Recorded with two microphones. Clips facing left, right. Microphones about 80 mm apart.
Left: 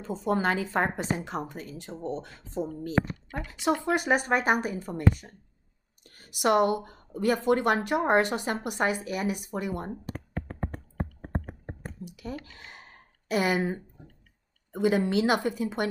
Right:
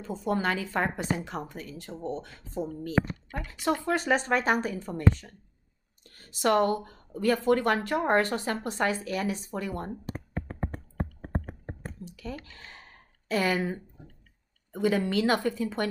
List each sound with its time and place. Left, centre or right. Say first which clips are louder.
0.0 s speech: left 2 dB; left
12.0 s speech: left 3 dB; centre